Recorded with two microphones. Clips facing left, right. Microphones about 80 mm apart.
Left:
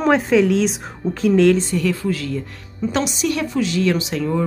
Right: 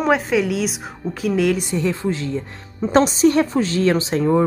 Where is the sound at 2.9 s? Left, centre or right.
Right.